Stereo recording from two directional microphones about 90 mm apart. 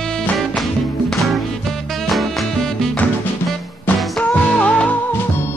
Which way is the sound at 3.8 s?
15° left (ahead or behind).